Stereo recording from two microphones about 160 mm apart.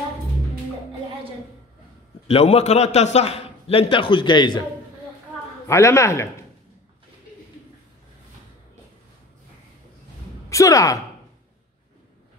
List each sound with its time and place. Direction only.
2.2 s a man's voice: 40° left (ahead or behind)
5.7 s a man's voice: 15° left (ahead or behind)
10.5 s speech: 20° left (ahead or behind)